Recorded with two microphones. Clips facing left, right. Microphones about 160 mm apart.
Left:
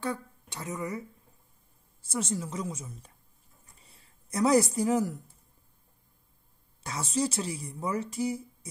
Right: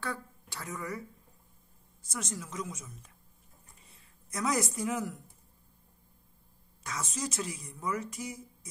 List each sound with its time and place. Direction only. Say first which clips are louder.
0.0 s a woman's voice: left 5 dB; 20° left (ahead or behind)
6.8 s a woman's voice: left 7 dB; 30° left (ahead or behind)